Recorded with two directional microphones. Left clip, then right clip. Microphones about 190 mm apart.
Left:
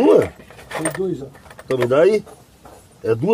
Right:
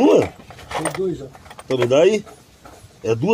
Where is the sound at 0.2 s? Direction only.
20° right (ahead or behind).